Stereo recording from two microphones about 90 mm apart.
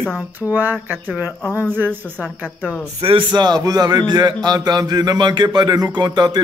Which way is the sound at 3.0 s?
90° right.